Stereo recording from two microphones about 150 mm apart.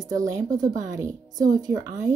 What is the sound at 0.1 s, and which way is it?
Speech, 20° right (ahead or behind).